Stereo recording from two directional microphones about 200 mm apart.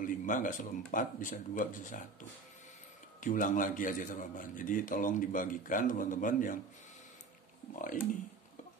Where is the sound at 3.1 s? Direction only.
40° left (ahead or behind).